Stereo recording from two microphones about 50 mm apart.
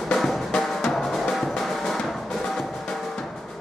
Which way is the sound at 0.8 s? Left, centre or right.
Centre.